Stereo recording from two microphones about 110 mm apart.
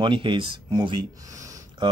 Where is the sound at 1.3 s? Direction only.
30° right (ahead or behind).